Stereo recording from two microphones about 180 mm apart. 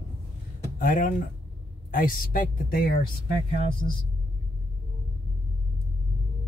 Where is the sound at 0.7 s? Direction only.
50° left (ahead or behind).